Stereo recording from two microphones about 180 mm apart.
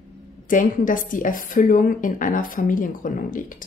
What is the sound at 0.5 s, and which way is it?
A woman's voice, 50° left (ahead or behind).